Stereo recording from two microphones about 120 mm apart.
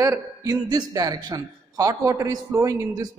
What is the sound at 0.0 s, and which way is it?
A man's voice, 25° right (ahead or behind).